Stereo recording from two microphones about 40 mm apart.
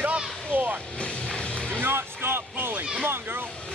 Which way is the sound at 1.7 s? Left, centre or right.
Right.